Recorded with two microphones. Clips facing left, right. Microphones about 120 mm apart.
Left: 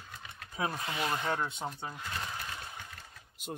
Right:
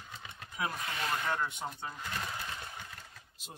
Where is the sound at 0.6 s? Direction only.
30° left (ahead or behind).